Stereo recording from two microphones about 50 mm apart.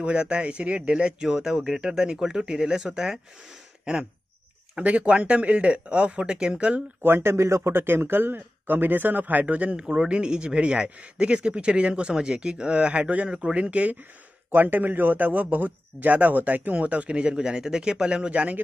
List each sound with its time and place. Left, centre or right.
0.0 s speech: right
4.7 s speech: right
7.0 s speech: right
7.8 s speech: right
14.5 s a man's voice: right